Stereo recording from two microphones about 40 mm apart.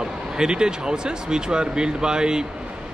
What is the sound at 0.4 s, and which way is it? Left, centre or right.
A man's voice, centre.